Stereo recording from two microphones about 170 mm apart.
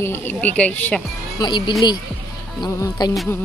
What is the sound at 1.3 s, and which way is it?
Speech, 25° left (ahead or behind).